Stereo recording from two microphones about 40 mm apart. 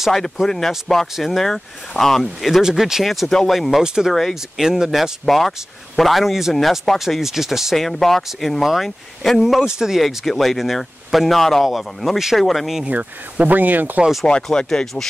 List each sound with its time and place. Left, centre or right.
0.1 s speech: centre
2.6 s speech: centre
3.8 s speech: centre
4.1 s speech: centre
4.6 s speech: centre
5.2 s speech: centre
7.7 s speech: centre
9.8 s speech: centre
10.0 s speech: centre
12.4 s speech: centre
13.5 s speech: right
14.2 s speech: left